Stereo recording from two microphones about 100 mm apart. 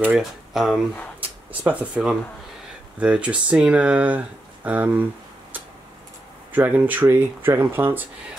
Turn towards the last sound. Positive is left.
turn(degrees=-20)  # may be behind; listen again after turning